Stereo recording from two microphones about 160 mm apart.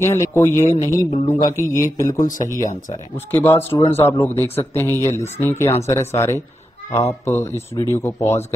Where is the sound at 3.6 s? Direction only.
35° left (ahead or behind).